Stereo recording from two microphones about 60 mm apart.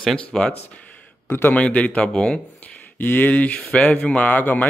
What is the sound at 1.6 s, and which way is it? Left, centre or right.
Speech, left.